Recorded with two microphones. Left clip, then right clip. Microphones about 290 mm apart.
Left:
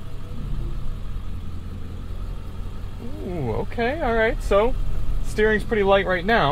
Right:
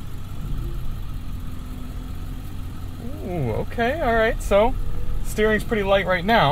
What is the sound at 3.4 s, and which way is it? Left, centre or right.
Speech, centre.